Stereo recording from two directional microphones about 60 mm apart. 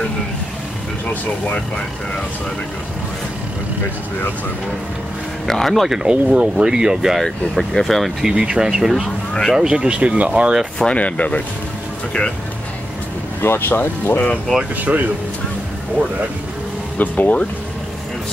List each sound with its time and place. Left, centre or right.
5.5 s speech: centre
6.0 s speech: centre
7.2 s speech: centre
8.3 s speech: centre
10.8 s speech: centre
13.4 s speech: left
14.6 s speech: right
17.0 s speech: left